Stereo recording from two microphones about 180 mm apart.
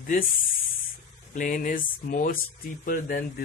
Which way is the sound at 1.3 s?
45° left (ahead or behind).